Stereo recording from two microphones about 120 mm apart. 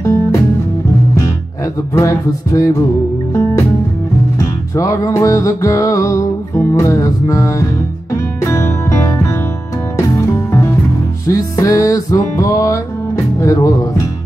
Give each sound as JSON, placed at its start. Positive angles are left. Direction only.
{"t": 0.0, "sound": "music", "side_deg": 25}
{"t": 2.0, "sound": "music", "side_deg": 25}
{"t": 4.4, "sound": "music", "side_deg": 25}